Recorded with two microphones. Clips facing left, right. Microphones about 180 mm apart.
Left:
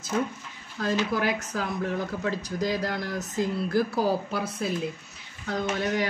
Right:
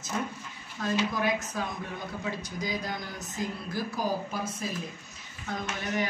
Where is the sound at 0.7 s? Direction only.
70° left (ahead or behind).